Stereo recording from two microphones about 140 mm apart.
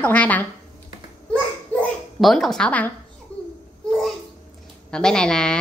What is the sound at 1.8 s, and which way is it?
A child's voice, centre (ahead or behind).